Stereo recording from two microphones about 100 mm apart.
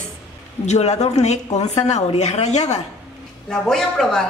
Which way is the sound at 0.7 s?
90° left.